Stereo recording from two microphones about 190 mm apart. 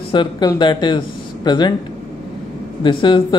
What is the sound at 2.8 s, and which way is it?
Speech, 25° left (ahead or behind).